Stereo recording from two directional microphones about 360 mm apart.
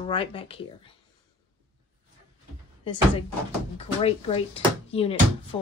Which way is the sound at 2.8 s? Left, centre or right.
Centre.